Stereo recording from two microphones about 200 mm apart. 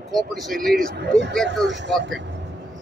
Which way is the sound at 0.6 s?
55° right (ahead or behind).